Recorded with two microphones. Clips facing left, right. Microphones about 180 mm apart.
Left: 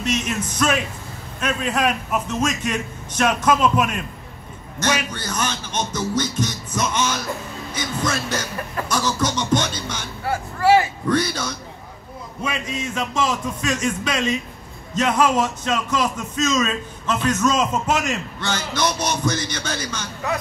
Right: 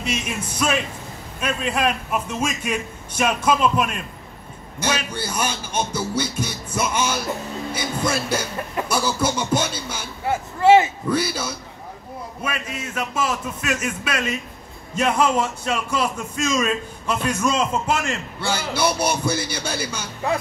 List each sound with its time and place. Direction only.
0.0 s speech: 10° right (ahead or behind)
3.7 s a man's voice: 5° left (ahead or behind)
4.8 s speech: 10° right (ahead or behind)
10.2 s speech: 20° right (ahead or behind)
11.1 s speech: 5° right (ahead or behind)
12.9 s speech: 5° right (ahead or behind)